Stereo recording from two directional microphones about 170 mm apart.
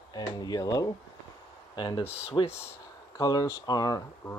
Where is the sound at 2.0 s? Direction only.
40° left (ahead or behind).